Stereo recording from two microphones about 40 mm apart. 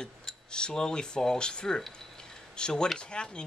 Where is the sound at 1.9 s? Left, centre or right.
Centre.